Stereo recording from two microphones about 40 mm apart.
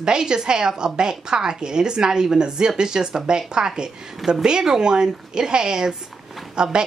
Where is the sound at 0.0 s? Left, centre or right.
Centre.